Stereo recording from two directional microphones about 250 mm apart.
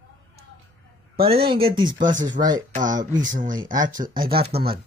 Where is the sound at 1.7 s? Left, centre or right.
Centre.